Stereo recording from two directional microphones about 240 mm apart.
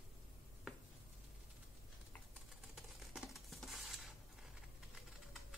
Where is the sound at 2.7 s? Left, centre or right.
Centre.